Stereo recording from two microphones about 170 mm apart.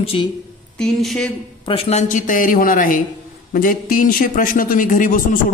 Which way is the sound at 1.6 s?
35° left (ahead or behind).